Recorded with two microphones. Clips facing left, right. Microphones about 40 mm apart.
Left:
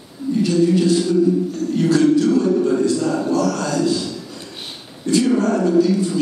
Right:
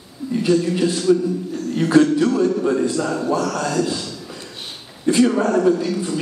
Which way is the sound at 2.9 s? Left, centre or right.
Centre.